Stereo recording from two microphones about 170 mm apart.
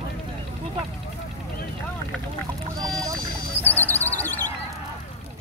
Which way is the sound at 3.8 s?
10° left (ahead or behind).